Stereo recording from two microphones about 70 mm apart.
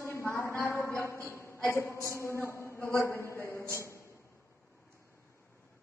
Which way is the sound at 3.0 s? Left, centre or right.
Left.